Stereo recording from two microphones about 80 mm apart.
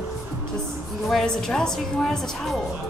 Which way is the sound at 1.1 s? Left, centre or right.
Centre.